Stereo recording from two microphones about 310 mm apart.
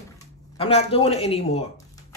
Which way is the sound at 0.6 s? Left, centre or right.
Centre.